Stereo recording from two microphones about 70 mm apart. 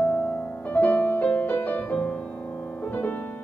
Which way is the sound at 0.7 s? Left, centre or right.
Left.